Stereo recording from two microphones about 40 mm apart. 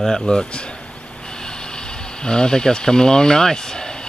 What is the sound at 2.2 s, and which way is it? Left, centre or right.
Speech, left.